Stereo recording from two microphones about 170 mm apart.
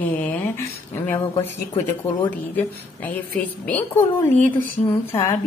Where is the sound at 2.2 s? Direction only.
10° left (ahead or behind).